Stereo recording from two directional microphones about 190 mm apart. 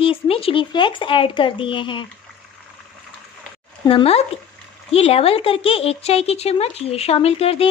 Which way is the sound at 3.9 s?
30° left (ahead or behind).